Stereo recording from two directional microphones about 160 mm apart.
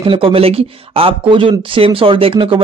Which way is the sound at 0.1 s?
35° right (ahead or behind).